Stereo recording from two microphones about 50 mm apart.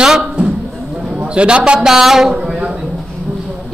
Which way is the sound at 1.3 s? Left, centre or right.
Centre.